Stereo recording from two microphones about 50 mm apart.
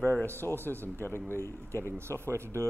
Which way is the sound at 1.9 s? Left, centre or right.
Right.